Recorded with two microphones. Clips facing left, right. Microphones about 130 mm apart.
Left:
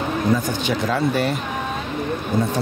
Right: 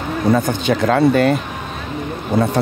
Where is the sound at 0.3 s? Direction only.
55° right (ahead or behind).